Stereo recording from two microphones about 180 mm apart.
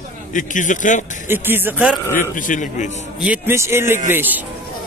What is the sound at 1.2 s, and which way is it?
Speech, 10° right (ahead or behind).